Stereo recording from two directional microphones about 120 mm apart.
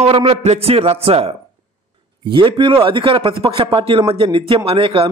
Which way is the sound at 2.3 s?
45° right (ahead or behind).